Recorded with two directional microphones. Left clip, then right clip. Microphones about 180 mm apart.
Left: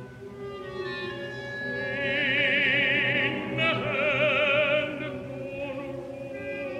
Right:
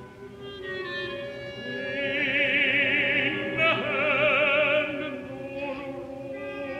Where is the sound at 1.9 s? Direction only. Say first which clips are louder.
Even; 15° right (ahead or behind).